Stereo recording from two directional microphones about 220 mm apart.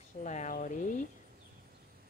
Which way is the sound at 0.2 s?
35° left (ahead or behind).